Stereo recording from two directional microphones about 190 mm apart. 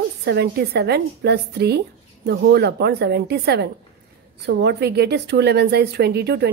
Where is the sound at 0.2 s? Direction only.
60° right (ahead or behind).